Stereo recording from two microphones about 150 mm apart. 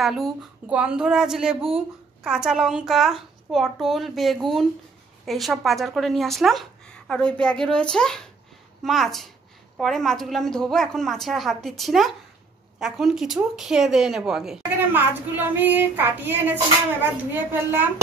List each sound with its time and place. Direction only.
0.0 s a woman's voice: centre (ahead or behind)